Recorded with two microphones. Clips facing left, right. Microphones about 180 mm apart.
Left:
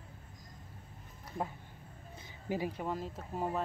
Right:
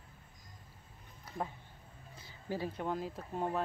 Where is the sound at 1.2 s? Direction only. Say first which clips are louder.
Left 1 dB; centre (ahead or behind).